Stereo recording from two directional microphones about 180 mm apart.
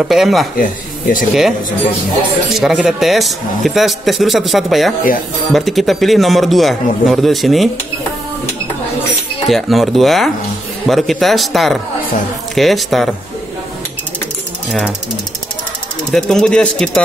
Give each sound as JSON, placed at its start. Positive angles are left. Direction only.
{"t": 0.0, "sound": "speech", "side_deg": 0}
{"t": 0.6, "sound": "speech", "side_deg": 50}
{"t": 2.5, "sound": "speech", "side_deg": 0}
{"t": 9.5, "sound": "speech", "side_deg": 0}
{"t": 16.1, "sound": "speech", "side_deg": 5}